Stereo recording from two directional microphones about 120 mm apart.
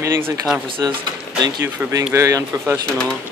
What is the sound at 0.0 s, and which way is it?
A man's voice, 25° right (ahead or behind).